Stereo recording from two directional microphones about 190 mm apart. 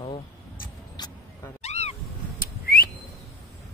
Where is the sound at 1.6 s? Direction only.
35° left (ahead or behind).